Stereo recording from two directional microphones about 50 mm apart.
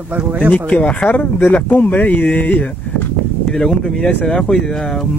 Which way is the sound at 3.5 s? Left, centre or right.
Centre.